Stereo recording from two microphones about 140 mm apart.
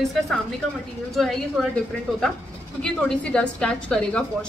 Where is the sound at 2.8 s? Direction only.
5° left (ahead or behind).